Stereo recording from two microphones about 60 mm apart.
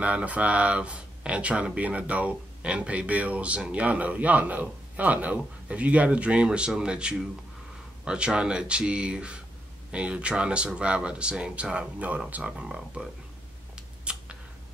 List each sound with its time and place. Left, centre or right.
0.0 s speech: right
14.1 s scissors: centre